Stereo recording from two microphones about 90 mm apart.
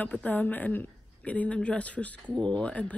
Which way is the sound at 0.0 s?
15° left (ahead or behind).